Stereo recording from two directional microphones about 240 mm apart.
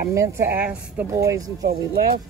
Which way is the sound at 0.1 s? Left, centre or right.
Centre.